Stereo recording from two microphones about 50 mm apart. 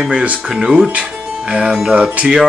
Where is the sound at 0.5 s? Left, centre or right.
Centre.